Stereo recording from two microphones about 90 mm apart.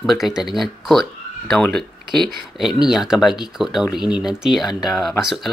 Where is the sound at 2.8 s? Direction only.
5° right (ahead or behind).